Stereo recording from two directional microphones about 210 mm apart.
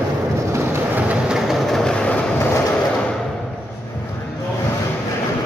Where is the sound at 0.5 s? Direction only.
10° right (ahead or behind); by 2.5 s 5° left (ahead or behind).